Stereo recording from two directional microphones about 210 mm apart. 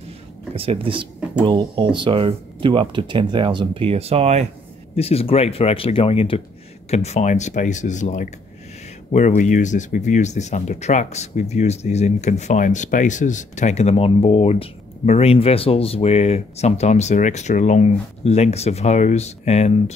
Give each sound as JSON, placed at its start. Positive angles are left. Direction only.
{"t": 0.6, "sound": "speech", "side_deg": -25}
{"t": 4.9, "sound": "speech", "side_deg": 30}